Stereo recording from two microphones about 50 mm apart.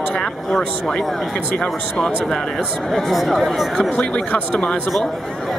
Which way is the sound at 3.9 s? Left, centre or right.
Left.